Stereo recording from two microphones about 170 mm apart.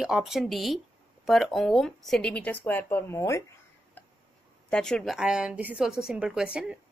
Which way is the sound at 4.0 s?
10° left (ahead or behind).